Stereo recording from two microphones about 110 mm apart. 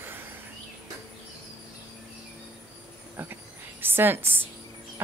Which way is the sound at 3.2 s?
15° right (ahead or behind).